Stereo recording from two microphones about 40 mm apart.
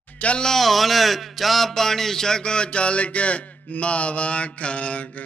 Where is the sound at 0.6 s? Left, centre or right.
Centre; by 5.1 s left.